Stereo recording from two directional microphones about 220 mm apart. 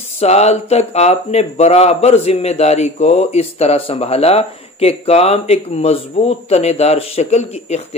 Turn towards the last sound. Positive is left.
turn(degrees=30)  # may be behind; listen again after turning